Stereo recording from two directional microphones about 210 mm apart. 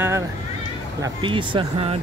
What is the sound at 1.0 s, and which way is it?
Speech, 25° right (ahead or behind).